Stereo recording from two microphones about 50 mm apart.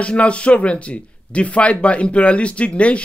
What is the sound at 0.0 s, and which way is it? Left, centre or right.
Speech, left.